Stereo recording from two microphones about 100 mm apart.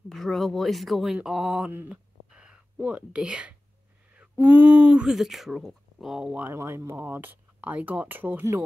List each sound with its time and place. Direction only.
0.1 s speech: centre (ahead or behind)
6.4 s speech: 25° right (ahead or behind)